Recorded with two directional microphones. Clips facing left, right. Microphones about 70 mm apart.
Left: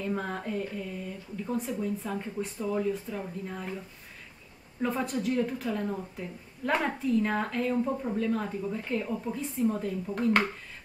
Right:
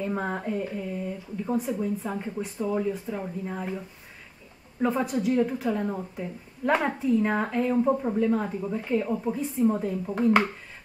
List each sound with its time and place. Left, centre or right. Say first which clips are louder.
0.0 s a woman's voice: right 3 dB; centre
4.9 s a woman's voice: right 4 dB; centre